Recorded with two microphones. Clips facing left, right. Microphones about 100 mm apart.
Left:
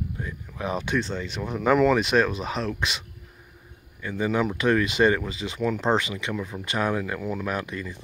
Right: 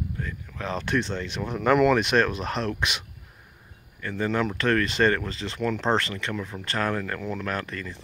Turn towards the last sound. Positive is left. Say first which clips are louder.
# left 1 dB
turn(degrees=10)  # may be behind; listen again after turning